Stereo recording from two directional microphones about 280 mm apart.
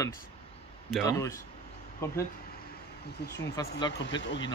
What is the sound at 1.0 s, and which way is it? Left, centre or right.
Speech, centre.